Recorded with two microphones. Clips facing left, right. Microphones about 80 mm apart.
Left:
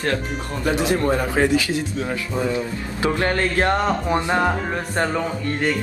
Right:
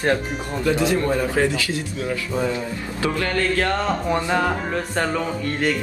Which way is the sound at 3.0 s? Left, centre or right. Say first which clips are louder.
Left 1 dB; left.